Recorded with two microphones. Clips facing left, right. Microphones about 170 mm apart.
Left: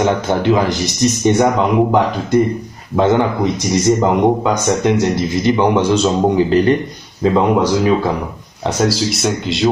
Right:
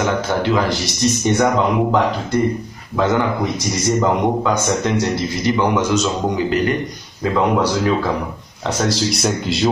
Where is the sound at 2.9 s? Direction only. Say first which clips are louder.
Left 4 dB; 20° left (ahead or behind).